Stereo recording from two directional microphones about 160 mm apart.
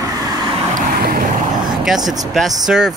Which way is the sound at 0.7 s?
60° right (ahead or behind).